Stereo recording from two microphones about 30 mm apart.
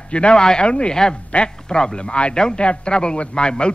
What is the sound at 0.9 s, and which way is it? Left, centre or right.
A man's voice, left.